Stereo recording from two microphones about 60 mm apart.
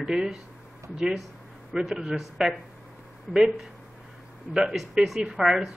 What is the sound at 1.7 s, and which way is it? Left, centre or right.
Speech, centre.